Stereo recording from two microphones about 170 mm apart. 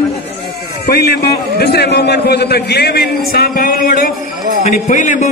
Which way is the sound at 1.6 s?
70° left (ahead or behind).